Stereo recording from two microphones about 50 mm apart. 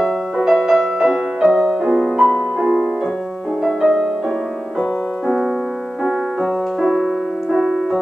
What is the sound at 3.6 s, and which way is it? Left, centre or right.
Music, centre.